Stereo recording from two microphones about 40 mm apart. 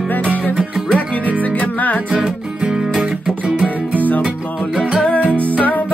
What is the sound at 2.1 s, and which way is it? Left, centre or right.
Music, right.